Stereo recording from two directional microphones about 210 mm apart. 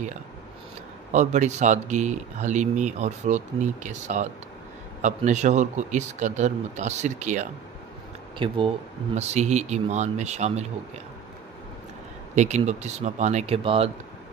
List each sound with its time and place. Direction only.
1.1 s speech: 35° right (ahead or behind)
8.4 s speech: 25° right (ahead or behind)
12.4 s speech: 35° right (ahead or behind)